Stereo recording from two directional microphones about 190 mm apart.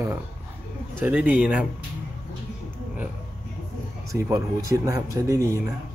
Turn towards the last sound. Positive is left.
turn(degrees=-15)  # may be behind; listen again after turning